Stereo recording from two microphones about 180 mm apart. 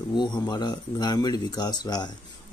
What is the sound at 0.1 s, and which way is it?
A man's voice, 25° left (ahead or behind).